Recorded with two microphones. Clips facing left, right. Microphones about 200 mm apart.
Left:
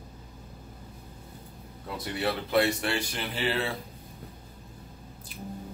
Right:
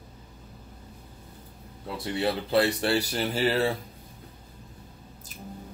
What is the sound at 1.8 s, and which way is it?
Speech, 25° right (ahead or behind).